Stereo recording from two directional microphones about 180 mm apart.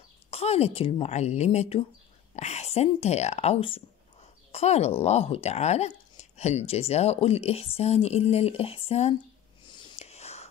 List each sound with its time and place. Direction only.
0.3 s speech: 35° left (ahead or behind)
9.7 s whispering: 25° left (ahead or behind)